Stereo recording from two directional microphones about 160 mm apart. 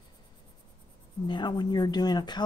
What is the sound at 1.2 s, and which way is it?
Speech, 30° left (ahead or behind).